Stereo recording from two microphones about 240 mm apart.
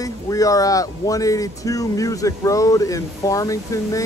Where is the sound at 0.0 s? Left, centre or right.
Centre.